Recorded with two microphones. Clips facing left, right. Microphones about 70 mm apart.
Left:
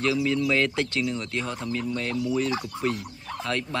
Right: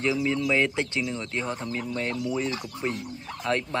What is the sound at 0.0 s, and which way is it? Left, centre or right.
Speech, right.